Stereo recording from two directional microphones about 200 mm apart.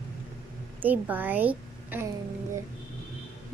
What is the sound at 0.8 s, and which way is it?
A woman's voice, 10° right (ahead or behind).